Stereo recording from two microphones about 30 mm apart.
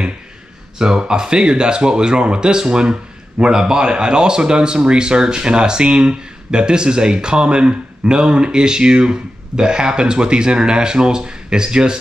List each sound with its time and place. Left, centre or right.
0.7 s speech: right